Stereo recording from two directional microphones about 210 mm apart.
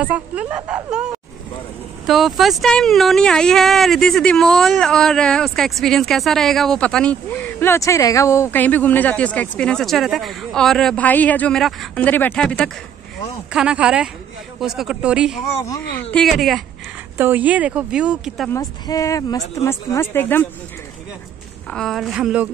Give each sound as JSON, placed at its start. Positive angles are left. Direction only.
{"t": 0.0, "sound": "speech", "side_deg": -5}
{"t": 2.0, "sound": "speech", "side_deg": 0}
{"t": 18.5, "sound": "speech", "side_deg": 15}
{"t": 21.6, "sound": "speech", "side_deg": 0}